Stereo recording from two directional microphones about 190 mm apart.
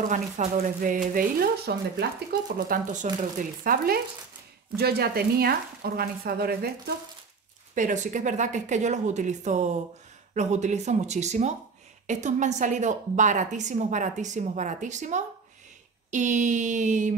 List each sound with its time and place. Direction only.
0.0 s speech: 40° right (ahead or behind)
7.7 s a woman's voice: 40° right (ahead or behind)